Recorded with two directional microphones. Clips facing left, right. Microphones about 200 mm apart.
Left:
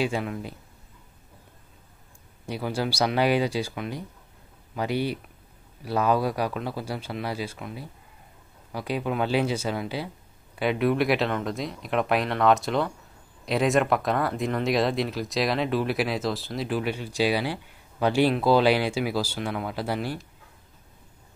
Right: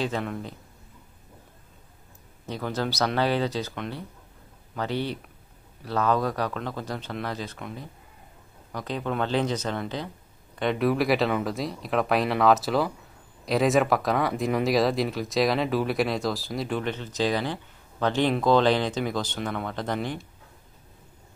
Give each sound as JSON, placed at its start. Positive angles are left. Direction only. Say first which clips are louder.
{"t": 0.0, "sound": "speech", "louder": "left 1 dB", "side_deg": 5}
{"t": 2.4, "sound": "speech", "louder": "left 1 dB", "side_deg": 10}